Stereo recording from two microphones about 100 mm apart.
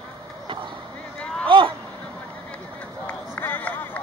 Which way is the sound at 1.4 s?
60° right (ahead or behind).